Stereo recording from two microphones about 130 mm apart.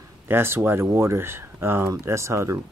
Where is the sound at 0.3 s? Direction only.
20° right (ahead or behind).